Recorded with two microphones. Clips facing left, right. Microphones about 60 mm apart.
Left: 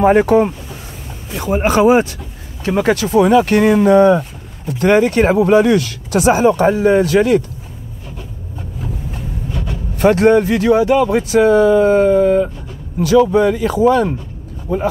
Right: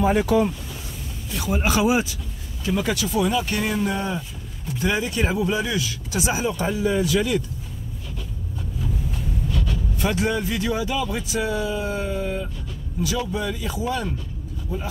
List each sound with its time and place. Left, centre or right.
0.0 s speech: left
9.1 s vehicle: left
9.9 s speech: left